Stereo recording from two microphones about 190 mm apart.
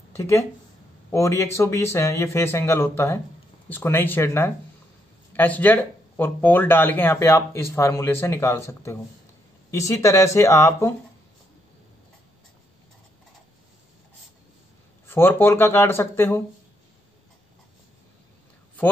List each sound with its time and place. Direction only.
0.1 s speech: 15° left (ahead or behind)
15.0 s speech: 10° left (ahead or behind)